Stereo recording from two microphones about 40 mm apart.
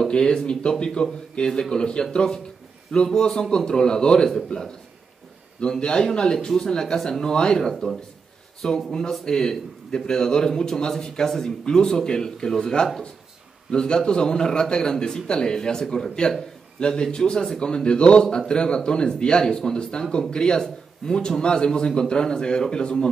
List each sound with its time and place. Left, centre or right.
0.1 s a man's voice: left
5.8 s a man's voice: left